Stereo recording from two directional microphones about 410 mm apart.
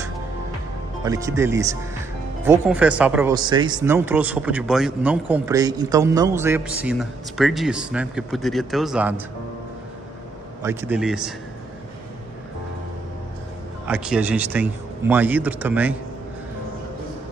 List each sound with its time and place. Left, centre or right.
1.0 s speech: centre
10.6 s speech: centre
13.8 s speech: centre